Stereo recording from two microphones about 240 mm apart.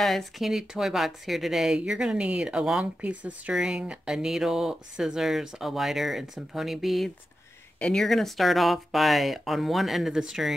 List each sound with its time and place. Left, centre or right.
0.0 s speech: centre